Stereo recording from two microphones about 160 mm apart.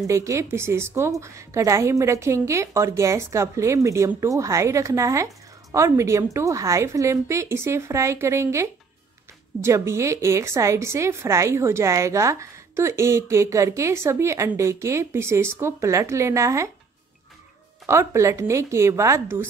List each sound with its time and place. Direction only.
0.0 s a woman's voice: 20° right (ahead or behind)
17.8 s a woman's voice: 20° right (ahead or behind)